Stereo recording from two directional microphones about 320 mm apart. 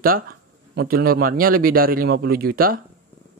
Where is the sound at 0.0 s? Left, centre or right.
Right.